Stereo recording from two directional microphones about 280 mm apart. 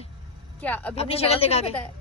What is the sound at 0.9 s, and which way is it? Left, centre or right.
Speech, left.